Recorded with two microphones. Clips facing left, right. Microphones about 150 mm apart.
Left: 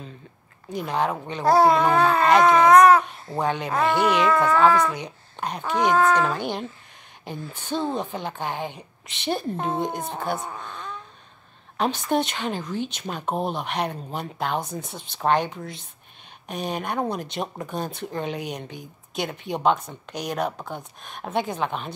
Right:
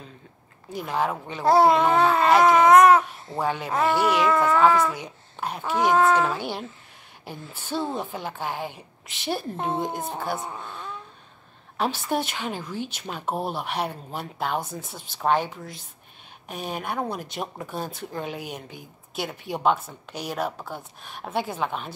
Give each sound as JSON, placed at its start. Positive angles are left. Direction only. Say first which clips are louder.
{"t": 0.7, "sound": "speech", "louder": "left 1 dB", "side_deg": -5}
{"t": 1.4, "sound": "a child's voice", "louder": "even", "side_deg": -25}
{"t": 2.0, "sound": "speech", "louder": "left 1 dB", "side_deg": -5}
{"t": 2.7, "sound": "babbling", "louder": "left 1 dB", "side_deg": -25}
{"t": 3.3, "sound": "a woman's voice", "louder": "left 1 dB", "side_deg": -5}
{"t": 10.6, "sound": "a sound", "louder": "left 1 dB", "side_deg": -5}
{"t": 12.1, "sound": "a woman's voice", "louder": "left 3 dB", "side_deg": -5}
{"t": 13.2, "sound": "speech", "louder": "left 2 dB", "side_deg": 20}
{"t": 13.6, "sound": "a woman's voice", "louder": "left 1 dB", "side_deg": -10}